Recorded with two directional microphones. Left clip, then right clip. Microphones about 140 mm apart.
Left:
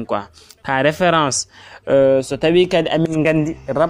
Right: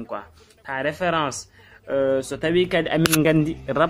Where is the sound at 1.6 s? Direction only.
65° left (ahead or behind).